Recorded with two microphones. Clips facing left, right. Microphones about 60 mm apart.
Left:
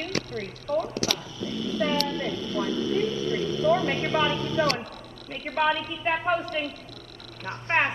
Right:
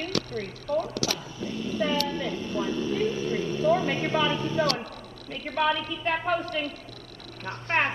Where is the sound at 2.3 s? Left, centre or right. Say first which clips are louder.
Left 1 dB; left.